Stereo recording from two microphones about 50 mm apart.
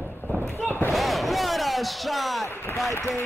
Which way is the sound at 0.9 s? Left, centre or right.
Centre.